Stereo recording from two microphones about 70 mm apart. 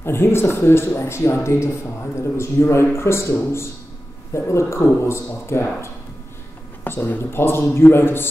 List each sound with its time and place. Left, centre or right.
0.0 s speech: left